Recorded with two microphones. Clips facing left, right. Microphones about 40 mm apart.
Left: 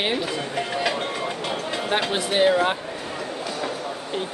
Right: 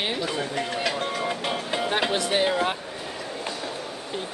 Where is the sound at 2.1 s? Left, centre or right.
Centre.